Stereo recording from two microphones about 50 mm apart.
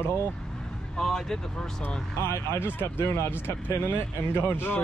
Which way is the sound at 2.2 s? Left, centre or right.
Left.